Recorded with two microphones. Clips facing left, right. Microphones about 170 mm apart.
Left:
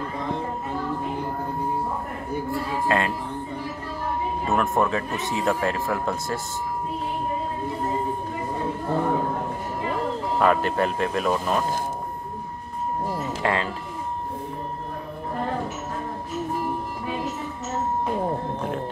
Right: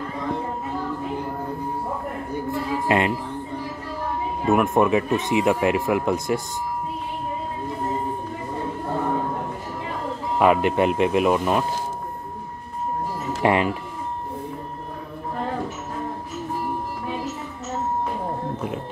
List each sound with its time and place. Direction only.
2.5 s music: 20° right (ahead or behind)
4.5 s speech: 15° right (ahead or behind)
10.4 s speech: 15° right (ahead or behind)
13.4 s speech: 15° right (ahead or behind)